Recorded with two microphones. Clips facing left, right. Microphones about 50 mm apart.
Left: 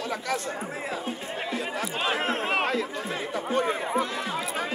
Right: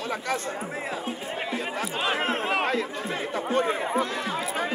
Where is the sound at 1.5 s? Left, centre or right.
Right.